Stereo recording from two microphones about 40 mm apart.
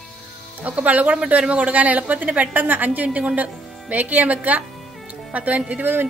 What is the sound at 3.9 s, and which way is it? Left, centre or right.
A woman's voice, right.